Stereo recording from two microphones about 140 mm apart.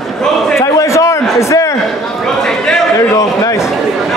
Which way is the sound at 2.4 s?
5° left (ahead or behind).